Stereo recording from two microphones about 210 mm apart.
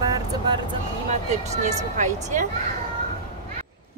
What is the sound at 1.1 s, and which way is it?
Speech, 35° right (ahead or behind).